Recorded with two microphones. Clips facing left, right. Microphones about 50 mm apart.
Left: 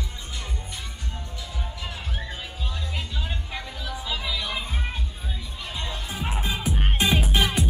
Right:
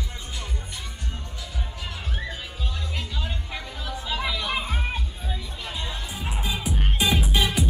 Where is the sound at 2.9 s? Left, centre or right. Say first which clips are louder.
Even; centre.